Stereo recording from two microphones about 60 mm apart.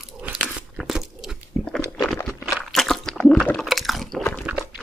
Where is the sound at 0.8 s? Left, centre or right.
Centre.